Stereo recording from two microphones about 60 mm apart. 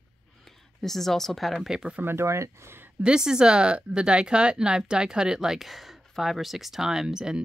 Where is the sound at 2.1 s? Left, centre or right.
Right.